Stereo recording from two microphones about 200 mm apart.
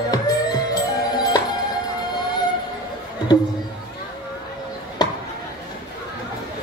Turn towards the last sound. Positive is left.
turn(degrees=20)  # may be behind; listen again after turning